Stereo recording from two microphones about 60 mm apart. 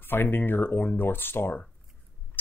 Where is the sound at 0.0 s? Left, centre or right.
Left.